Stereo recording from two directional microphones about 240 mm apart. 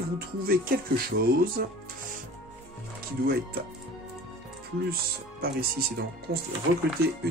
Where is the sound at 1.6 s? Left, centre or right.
Right.